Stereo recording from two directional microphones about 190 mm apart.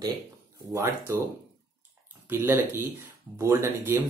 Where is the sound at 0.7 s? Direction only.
15° right (ahead or behind).